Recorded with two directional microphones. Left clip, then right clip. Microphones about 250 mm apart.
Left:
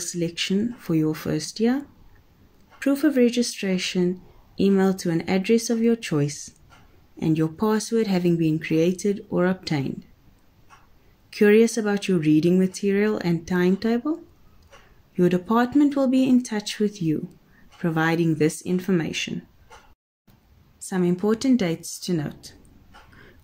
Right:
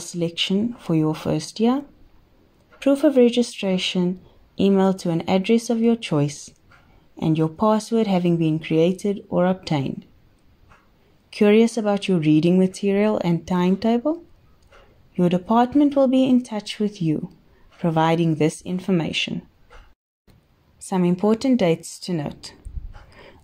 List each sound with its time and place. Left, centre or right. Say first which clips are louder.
0.0 s speech: right 3 dB; centre
2.8 s speech: right 4 dB; centre
11.2 s speech: even; centre
15.1 s speech: right 2 dB; centre
20.8 s speech: right 3 dB; centre